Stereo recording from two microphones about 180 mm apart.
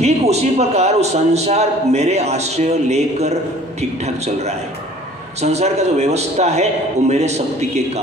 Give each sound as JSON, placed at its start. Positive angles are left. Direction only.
{"t": 0.0, "sound": "a man's voice", "side_deg": -35}